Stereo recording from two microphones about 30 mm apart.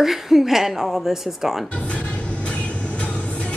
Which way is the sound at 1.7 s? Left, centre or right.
Left.